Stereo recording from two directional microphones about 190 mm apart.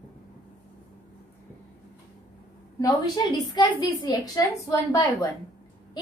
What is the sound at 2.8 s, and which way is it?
A woman's voice, 25° left (ahead or behind).